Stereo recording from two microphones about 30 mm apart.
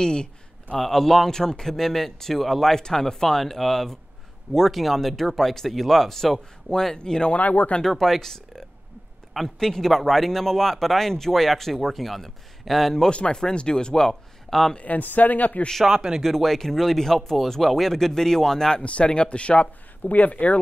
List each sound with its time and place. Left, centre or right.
0.0 s speech: left
0.7 s speech: centre
2.7 s speech: centre
7.0 s speech: left
7.3 s speech: left
8.0 s speech: centre
13.3 s speech: left
14.8 s speech: left
15.9 s speech: centre
16.2 s speech: centre
18.8 s speech: left
20.0 s speech: left